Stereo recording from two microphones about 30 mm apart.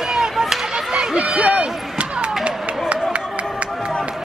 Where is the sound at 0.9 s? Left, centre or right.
Right.